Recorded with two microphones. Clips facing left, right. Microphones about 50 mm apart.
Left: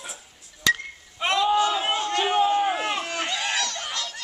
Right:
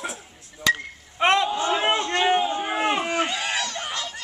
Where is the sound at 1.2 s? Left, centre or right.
Right.